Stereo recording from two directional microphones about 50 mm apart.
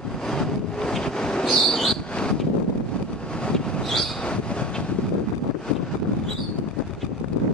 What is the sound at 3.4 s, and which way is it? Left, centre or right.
Vehicle, centre.